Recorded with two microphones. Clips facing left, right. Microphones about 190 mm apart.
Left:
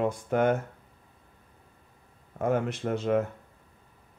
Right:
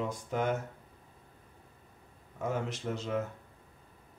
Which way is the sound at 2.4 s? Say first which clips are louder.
Left 7 dB; 60° left (ahead or behind).